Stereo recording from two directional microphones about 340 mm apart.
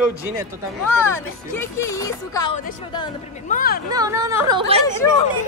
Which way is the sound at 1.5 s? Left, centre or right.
Centre.